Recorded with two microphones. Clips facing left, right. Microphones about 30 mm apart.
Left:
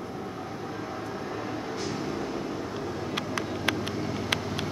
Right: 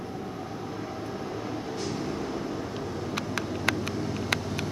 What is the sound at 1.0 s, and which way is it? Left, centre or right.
Vehicle, centre.